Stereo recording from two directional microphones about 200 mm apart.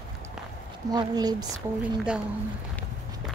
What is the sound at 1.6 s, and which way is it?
Speech, 5° right (ahead or behind).